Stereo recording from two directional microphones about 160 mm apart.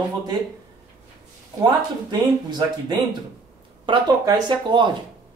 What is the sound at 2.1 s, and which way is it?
Speech, 25° right (ahead or behind).